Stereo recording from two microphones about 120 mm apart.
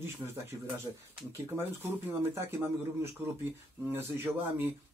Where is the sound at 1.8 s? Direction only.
20° right (ahead or behind).